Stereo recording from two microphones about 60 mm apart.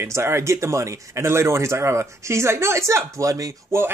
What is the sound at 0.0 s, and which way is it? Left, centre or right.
Speech, right.